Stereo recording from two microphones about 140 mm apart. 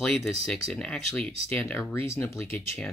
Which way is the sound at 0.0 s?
5° left (ahead or behind).